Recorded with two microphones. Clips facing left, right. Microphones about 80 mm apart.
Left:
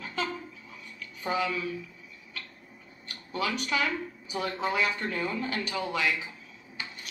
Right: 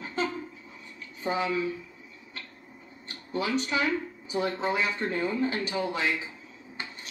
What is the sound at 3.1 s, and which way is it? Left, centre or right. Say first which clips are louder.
Speech: right 2 dB; right.